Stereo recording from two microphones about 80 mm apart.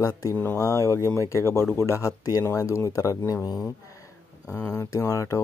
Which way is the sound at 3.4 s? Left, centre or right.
Left.